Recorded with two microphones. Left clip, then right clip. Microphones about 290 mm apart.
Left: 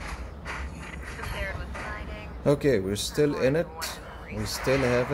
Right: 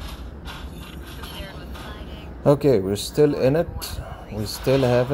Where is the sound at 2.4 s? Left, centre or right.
Centre.